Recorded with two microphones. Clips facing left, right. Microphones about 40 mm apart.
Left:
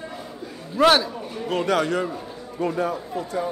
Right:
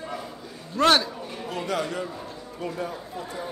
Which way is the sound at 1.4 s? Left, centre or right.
Left.